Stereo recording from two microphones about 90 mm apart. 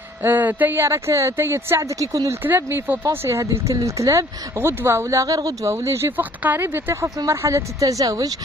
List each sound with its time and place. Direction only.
0.2 s speech: 20° right (ahead or behind); by 2.3 s 40° right (ahead or behind)
2.4 s speech: 20° right (ahead or behind); by 8.4 s 40° right (ahead or behind)